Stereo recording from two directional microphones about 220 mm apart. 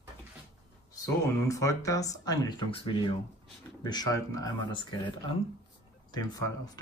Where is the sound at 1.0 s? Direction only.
15° left (ahead or behind).